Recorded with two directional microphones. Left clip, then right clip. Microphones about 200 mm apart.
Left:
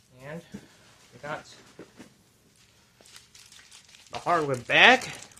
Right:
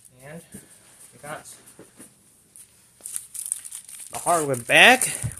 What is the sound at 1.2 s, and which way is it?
Speech, centre (ahead or behind).